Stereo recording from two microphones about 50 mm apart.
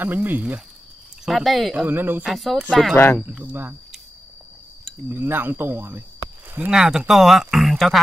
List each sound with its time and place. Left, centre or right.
0.0 s speech: right
1.2 s speech: centre
1.9 s speech: right
2.2 s speech: centre
2.7 s speech: centre
5.1 s speech: right
6.7 s speech: centre